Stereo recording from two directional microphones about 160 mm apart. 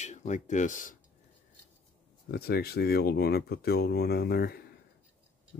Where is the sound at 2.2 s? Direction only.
75° left (ahead or behind).